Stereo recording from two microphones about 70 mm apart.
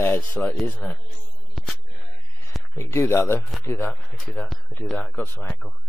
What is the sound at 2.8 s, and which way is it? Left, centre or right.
Speech, left.